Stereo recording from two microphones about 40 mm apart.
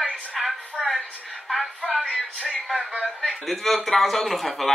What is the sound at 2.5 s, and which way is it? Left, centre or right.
Speech, centre.